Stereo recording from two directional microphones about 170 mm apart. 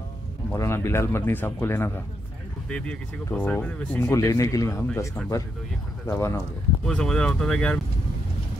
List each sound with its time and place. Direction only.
0.5 s speech: 15° left (ahead or behind)
6.9 s speech: 5° left (ahead or behind)